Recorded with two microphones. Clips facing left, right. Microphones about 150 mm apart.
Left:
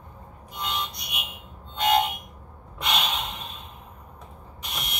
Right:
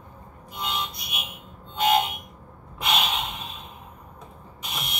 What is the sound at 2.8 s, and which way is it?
Gasp, centre (ahead or behind).